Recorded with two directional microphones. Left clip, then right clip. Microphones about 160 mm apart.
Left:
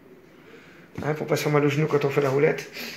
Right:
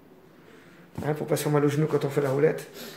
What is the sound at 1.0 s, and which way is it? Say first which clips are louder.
A man's voice: left 2 dB; 15° right (ahead or behind).